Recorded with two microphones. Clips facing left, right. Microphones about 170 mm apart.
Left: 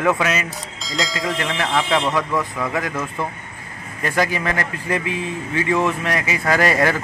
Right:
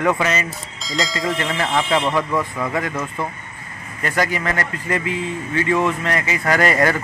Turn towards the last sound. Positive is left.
turn(degrees=15)  # may be behind; listen again after turning